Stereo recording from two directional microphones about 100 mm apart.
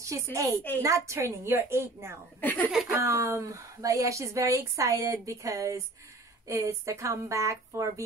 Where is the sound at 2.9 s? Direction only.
30° right (ahead or behind).